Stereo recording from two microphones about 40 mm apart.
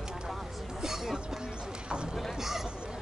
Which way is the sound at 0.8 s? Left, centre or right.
Centre.